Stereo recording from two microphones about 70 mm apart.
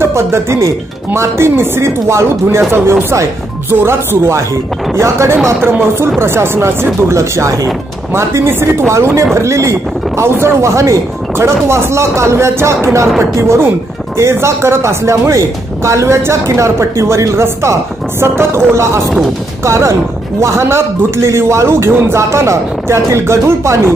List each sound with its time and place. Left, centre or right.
0.0 s speech: right